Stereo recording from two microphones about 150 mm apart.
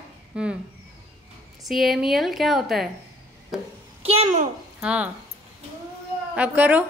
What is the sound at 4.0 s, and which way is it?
Speech, 40° right (ahead or behind).